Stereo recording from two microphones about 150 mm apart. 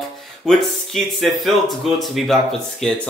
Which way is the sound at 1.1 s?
Centre (ahead or behind).